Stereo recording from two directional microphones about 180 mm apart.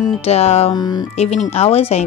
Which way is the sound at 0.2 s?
35° left (ahead or behind).